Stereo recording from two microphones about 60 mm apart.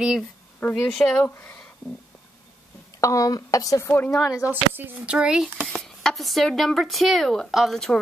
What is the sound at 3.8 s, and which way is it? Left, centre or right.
Speech, left.